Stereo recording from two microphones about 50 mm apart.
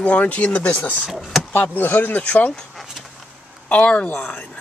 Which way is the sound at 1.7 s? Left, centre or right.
Left.